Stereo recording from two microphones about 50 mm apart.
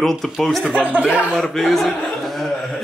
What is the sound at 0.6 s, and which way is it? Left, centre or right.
Speech, right.